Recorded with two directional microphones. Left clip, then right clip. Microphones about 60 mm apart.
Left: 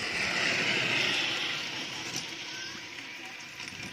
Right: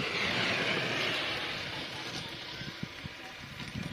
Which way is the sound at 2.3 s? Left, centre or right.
Right.